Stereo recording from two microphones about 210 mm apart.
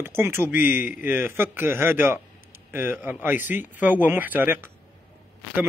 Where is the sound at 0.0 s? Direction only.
10° right (ahead or behind).